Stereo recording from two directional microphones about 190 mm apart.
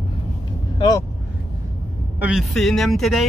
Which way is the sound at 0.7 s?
20° left (ahead or behind).